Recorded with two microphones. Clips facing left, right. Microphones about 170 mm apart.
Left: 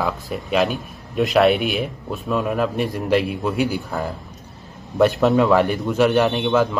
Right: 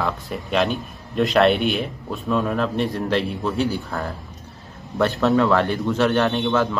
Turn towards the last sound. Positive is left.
turn(degrees=5)  # may be behind; listen again after turning